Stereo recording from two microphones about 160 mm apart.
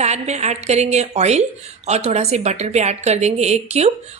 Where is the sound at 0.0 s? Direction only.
45° right (ahead or behind).